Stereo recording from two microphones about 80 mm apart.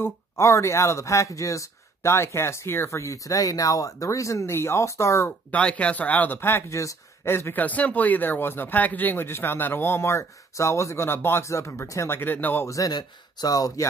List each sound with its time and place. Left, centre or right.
0.0 s speech: left
5.5 s speech: centre; by 12.2 s left
12.2 s speech: left
12.6 s speech: left